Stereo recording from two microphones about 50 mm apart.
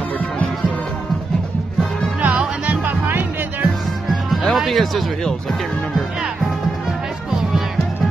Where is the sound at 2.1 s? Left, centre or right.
Right.